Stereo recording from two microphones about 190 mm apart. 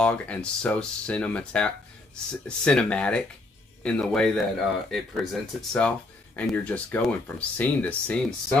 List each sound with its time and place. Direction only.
0.0 s speech: 5° left (ahead or behind)